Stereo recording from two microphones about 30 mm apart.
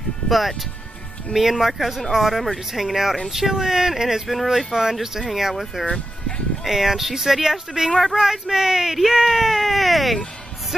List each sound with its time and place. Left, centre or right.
0.3 s speech: centre
4.7 s speech: right
5.2 s speech: centre
5.9 s music: left
6.6 s speech: centre
7.9 s speech: centre
8.2 s speech: centre